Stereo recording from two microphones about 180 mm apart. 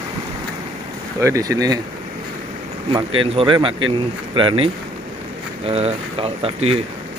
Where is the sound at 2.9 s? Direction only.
30° right (ahead or behind).